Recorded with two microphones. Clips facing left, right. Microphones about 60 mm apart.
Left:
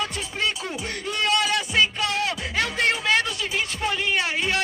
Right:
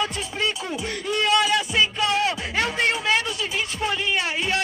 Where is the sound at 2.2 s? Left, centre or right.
Right.